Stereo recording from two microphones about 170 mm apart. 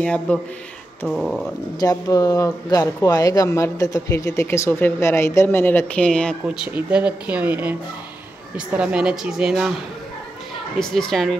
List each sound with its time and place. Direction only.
0.0 s speech: 5° left (ahead or behind)
1.8 s speech: 20° left (ahead or behind); by 6.3 s 5° left (ahead or behind)
6.4 s speech: 5° right (ahead or behind)
10.8 s speech: 5° left (ahead or behind)